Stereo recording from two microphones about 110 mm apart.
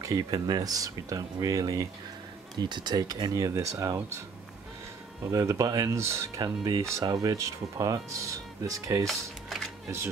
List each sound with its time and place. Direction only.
0.0 s speech: 35° right (ahead or behind)
2.5 s speech: 40° right (ahead or behind)
5.2 s speech: 30° right (ahead or behind)
9.0 s speech: centre (ahead or behind)